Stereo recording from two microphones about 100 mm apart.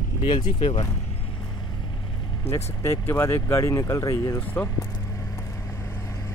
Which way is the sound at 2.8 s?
30° left (ahead or behind).